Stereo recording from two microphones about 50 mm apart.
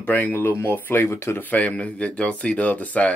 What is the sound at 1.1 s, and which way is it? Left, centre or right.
Speech, left.